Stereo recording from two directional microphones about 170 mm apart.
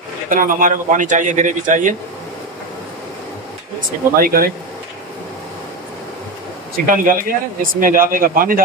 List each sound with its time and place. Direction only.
0.3 s a man's voice: 50° right (ahead or behind)
4.2 s speech: 60° right (ahead or behind)
6.9 s speech: 55° right (ahead or behind)